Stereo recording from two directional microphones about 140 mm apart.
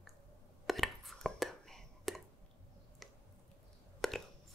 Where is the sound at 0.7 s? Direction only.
Centre (ahead or behind).